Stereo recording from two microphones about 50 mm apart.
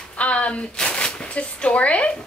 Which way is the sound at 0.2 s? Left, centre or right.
Left.